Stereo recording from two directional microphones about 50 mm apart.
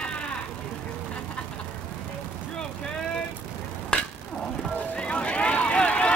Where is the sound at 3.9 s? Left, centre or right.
Left.